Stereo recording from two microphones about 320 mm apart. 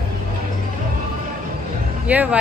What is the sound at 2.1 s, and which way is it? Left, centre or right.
Speech, centre.